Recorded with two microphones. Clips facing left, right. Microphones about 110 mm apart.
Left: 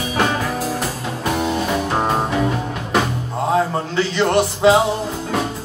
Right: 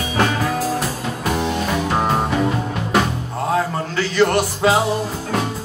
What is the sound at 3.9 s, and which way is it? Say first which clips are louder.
Music: even; 20° left (ahead or behind).